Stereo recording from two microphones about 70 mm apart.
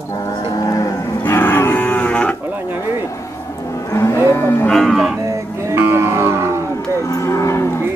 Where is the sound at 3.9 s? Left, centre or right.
Left.